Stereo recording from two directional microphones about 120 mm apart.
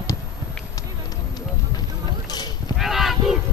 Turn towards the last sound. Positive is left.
turn(degrees=0)  # may be behind; listen again after turning